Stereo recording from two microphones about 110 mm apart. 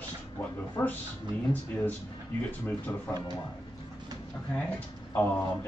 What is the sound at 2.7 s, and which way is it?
Speech, 15° left (ahead or behind).